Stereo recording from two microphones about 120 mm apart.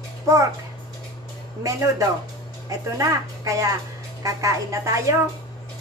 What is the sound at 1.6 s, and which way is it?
A woman's voice, 30° right (ahead or behind).